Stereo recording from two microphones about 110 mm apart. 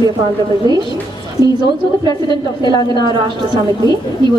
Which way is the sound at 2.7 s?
40° right (ahead or behind).